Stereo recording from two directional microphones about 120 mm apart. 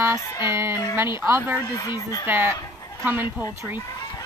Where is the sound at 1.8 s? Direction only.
30° left (ahead or behind).